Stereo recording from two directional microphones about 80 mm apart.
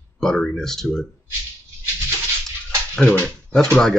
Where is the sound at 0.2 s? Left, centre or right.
Centre.